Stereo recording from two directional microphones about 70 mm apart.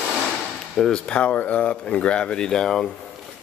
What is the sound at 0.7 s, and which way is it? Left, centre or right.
Speech, centre.